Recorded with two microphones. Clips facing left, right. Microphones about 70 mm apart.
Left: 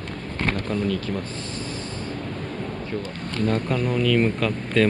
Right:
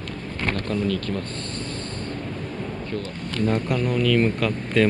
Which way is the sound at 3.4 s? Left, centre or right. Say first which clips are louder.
Even; centre.